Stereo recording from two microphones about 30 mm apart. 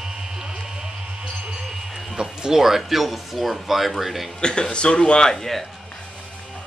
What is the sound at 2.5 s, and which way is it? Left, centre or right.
Speech, centre.